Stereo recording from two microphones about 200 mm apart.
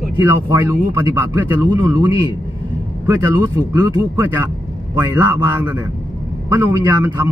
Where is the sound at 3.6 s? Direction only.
15° right (ahead or behind).